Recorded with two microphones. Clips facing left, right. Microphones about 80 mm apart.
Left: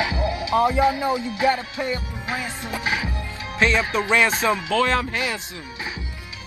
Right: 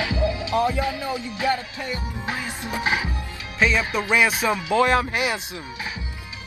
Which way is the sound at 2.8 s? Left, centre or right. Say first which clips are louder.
Right 2 dB; right.